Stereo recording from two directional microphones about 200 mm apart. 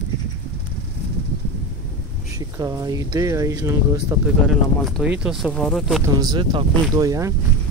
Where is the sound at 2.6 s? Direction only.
15° right (ahead or behind); by 6.0 s centre (ahead or behind).